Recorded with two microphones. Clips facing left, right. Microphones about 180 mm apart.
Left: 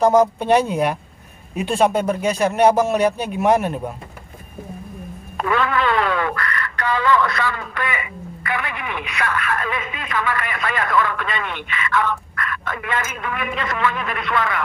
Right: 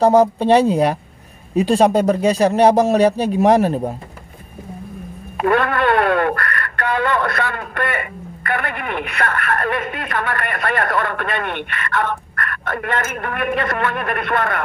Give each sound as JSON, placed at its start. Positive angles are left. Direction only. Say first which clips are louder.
{"t": 0.0, "sound": "speech", "louder": "right 2 dB", "side_deg": -35}
{"t": 5.4, "sound": "speech", "louder": "right 3 dB", "side_deg": -55}